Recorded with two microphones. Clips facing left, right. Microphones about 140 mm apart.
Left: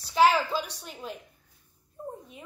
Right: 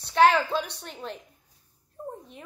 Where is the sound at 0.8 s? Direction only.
5° left (ahead or behind).